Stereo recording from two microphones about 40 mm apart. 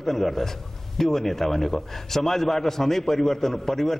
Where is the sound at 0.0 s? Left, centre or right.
Centre.